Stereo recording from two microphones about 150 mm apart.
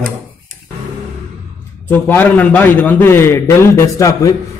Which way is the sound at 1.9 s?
10° left (ahead or behind).